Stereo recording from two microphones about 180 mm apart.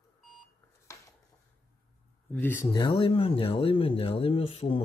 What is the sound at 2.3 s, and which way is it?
Speech, 10° left (ahead or behind).